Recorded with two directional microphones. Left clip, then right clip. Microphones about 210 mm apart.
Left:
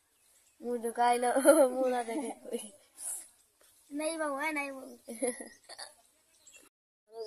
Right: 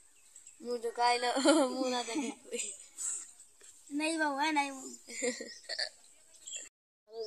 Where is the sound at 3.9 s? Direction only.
5° left (ahead or behind).